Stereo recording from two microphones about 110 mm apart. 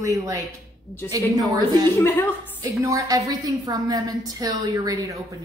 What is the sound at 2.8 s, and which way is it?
A woman's voice, 30° right (ahead or behind).